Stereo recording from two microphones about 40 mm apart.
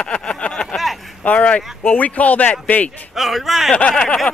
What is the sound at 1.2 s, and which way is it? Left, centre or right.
Speech, left.